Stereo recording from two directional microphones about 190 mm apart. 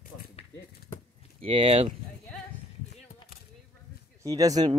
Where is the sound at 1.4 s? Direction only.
30° right (ahead or behind).